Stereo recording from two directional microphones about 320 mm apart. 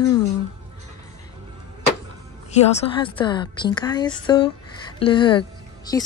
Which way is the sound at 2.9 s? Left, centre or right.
Centre.